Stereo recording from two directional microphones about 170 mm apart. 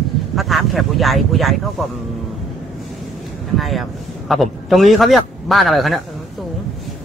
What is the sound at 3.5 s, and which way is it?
Speech, centre (ahead or behind).